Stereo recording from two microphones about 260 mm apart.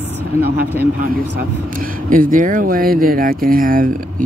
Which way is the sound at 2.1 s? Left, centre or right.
Right.